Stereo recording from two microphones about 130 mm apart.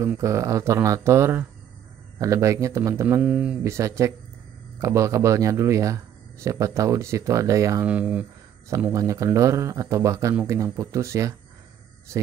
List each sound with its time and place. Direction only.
0.0 s speech: 20° right (ahead or behind)
3.6 s speech: 20° right (ahead or behind)
7.8 s speech: 10° right (ahead or behind)
8.9 s speech: 25° right (ahead or behind)